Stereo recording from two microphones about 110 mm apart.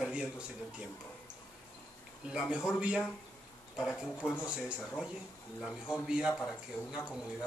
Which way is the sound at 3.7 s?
5° right (ahead or behind).